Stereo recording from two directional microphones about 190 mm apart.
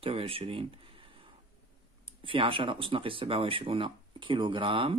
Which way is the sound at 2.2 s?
25° right (ahead or behind).